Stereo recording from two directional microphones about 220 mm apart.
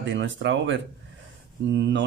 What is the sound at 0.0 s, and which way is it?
Speech, 55° right (ahead or behind).